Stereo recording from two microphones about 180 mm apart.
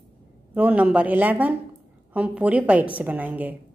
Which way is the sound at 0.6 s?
10° right (ahead or behind).